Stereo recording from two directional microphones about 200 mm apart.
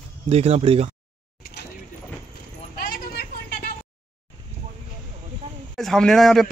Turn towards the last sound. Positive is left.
turn(degrees=0)  # may be behind; listen again after turning